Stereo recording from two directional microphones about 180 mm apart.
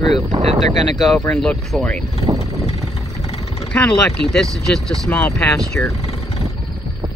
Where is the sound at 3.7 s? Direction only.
5° left (ahead or behind).